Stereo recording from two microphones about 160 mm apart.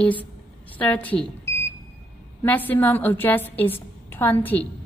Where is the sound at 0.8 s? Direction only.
10° left (ahead or behind).